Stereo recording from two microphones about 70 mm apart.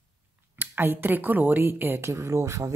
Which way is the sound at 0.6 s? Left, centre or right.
Right.